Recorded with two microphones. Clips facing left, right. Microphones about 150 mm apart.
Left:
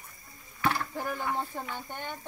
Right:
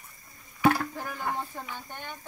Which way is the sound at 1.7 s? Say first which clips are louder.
Left 2 dB; 15° left (ahead or behind).